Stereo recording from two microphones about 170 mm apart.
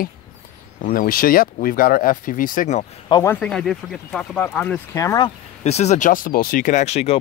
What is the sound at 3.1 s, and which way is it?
Speech, 25° left (ahead or behind).